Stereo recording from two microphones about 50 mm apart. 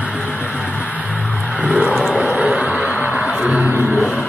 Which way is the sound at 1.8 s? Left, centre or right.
Centre.